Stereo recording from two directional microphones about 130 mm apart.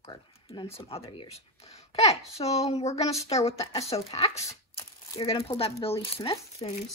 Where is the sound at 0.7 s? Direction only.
45° left (ahead or behind).